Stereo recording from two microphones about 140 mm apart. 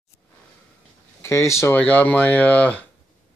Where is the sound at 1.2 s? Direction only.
20° left (ahead or behind).